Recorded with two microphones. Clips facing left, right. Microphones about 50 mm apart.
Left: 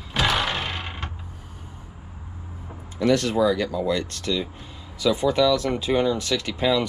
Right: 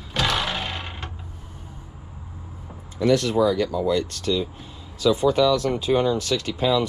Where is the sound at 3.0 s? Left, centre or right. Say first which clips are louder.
Right 1 dB; left.